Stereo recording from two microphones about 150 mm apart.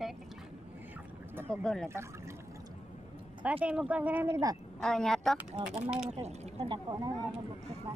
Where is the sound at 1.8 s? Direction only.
20° right (ahead or behind).